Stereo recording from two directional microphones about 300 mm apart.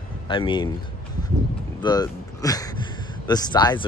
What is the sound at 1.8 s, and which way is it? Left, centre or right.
Speech, centre.